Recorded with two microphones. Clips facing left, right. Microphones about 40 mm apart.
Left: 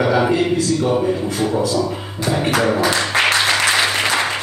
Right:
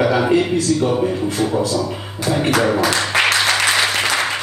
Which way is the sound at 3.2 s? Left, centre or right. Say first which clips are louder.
Left 1 dB; centre.